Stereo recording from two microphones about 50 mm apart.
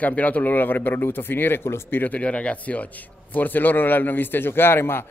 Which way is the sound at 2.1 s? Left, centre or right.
Left.